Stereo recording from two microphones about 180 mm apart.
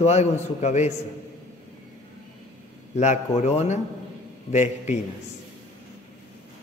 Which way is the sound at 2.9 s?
40° left (ahead or behind).